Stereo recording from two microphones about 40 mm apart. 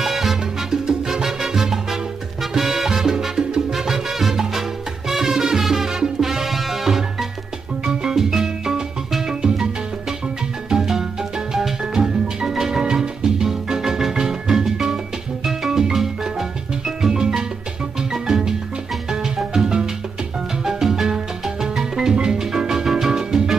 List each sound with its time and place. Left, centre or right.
0.0 s salsa music: centre
7.9 s music: centre
10.7 s music: centre
17.1 s music: centre